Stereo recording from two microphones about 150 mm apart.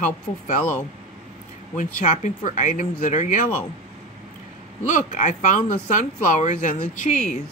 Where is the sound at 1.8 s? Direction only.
55° left (ahead or behind).